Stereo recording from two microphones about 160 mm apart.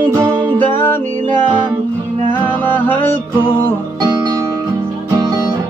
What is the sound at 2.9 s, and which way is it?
Music, 10° left (ahead or behind).